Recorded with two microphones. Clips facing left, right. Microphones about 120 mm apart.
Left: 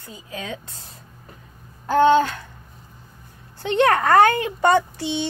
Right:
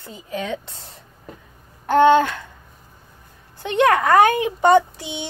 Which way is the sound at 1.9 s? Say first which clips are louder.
Right 2 dB; 60° right (ahead or behind).